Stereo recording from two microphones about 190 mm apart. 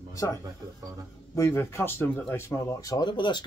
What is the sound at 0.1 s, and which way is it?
Speech, 15° left (ahead or behind).